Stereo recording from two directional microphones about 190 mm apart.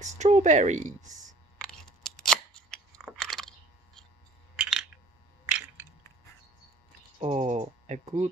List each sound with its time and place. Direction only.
0.0 s speech: 35° right (ahead or behind)
1.6 s scissors: 5° left (ahead or behind)
3.1 s computer keyboard: centre (ahead or behind)
4.6 s coin: 5° right (ahead or behind)
7.2 s speech: 35° right (ahead or behind)